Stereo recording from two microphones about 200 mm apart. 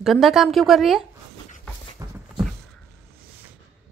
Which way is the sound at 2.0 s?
15° right (ahead or behind).